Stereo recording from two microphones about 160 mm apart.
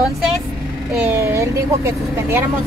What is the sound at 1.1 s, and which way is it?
Speech, 15° right (ahead or behind).